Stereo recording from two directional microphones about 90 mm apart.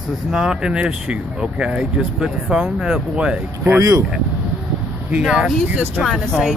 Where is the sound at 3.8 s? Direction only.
40° right (ahead or behind).